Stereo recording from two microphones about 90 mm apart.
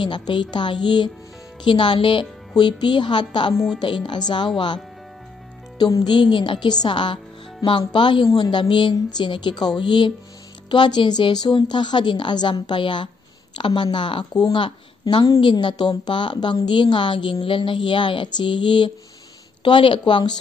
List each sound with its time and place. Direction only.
0.0 s speech: 65° left (ahead or behind)
5.8 s speech: 50° left (ahead or behind)